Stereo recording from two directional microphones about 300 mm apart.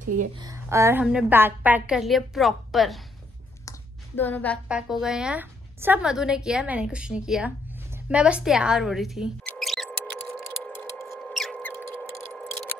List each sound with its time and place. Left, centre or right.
0.4 s a woman's voice: centre
4.2 s a woman's voice: centre
8.1 s a sound: centre